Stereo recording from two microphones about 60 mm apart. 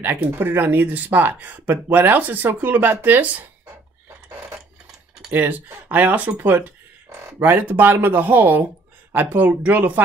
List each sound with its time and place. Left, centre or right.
0.0 s speech: right
5.3 s speech: right